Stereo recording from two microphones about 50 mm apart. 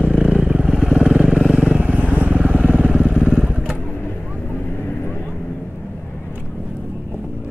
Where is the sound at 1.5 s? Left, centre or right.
Centre.